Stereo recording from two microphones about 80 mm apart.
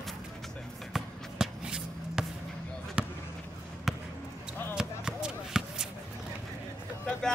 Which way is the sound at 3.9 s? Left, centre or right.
Centre.